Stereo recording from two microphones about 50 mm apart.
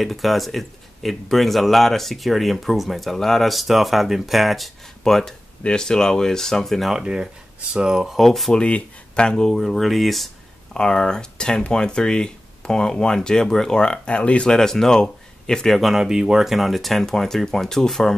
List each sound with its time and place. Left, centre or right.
0.0 s speech: centre
6.9 s speech: centre
8.2 s speech: centre
8.5 s speech: left; by 10.3 s centre
10.7 s speech: centre
14.5 s speech: centre
15.7 s speech: centre